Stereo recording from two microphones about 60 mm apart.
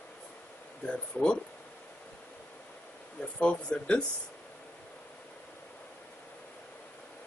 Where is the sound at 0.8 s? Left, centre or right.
Centre.